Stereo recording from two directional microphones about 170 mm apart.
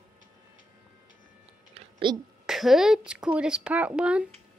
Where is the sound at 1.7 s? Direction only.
25° right (ahead or behind).